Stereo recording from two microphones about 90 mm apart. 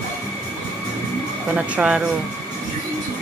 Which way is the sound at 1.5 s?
10° right (ahead or behind).